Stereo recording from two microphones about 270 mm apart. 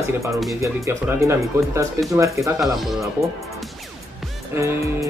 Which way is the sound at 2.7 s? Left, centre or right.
Centre.